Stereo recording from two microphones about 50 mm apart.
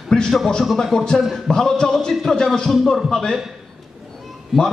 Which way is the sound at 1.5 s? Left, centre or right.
Centre.